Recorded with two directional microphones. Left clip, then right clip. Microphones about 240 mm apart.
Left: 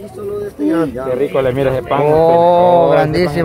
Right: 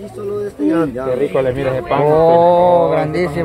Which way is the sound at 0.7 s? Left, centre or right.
Centre.